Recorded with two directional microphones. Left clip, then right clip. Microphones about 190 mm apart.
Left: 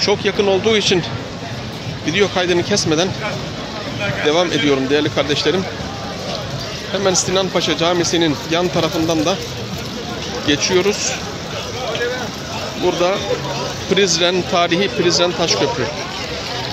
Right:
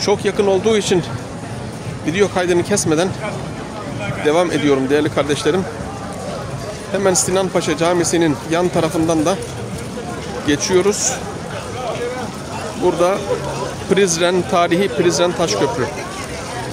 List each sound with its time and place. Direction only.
0.0 s speech: 10° right (ahead or behind)
2.0 s speech: 15° right (ahead or behind)
4.2 s speech: 15° right (ahead or behind)
7.1 s speech: 20° right (ahead or behind)
10.4 s speech: 15° right (ahead or behind)
13.9 s speech: 15° right (ahead or behind)